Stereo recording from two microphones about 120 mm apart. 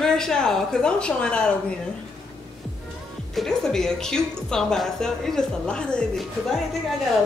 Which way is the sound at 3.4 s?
5° left (ahead or behind).